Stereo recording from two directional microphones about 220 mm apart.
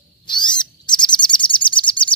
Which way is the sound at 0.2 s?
20° left (ahead or behind).